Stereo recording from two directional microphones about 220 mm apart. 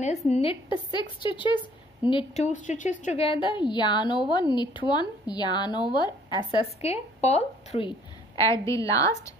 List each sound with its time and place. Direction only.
0.3 s a woman's voice: 25° left (ahead or behind)
8.4 s a woman's voice: 15° left (ahead or behind)